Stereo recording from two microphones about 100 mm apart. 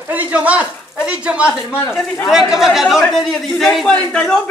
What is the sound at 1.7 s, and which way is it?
Speech, 20° left (ahead or behind).